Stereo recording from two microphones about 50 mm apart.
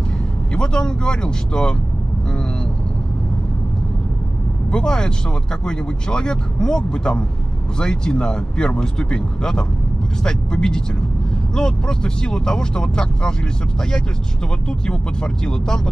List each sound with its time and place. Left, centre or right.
0.6 s speech: centre
4.6 s speech: centre
14.9 s speech: centre